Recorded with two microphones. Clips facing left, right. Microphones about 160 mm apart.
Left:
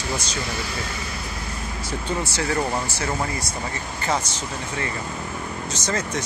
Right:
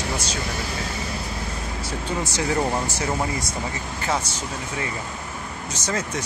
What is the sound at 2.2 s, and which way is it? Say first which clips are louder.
Speech: right 4 dB; 15° right (ahead or behind).